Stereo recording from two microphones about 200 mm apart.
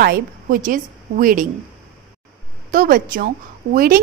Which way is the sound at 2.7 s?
45° right (ahead or behind).